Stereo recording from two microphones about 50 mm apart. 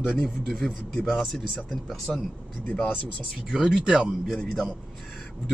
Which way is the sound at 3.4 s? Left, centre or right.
Centre.